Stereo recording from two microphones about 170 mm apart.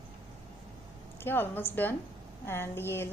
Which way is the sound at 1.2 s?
10° left (ahead or behind).